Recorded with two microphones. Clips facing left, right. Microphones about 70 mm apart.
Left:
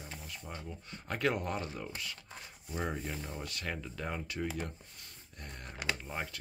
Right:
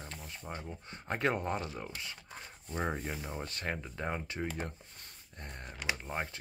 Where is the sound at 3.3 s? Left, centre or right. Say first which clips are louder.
Right 2 dB; right.